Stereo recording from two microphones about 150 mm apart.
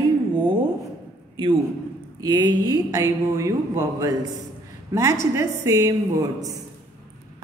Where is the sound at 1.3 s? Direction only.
35° right (ahead or behind).